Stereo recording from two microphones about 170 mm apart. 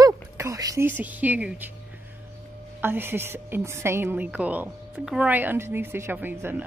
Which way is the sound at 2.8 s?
10° right (ahead or behind).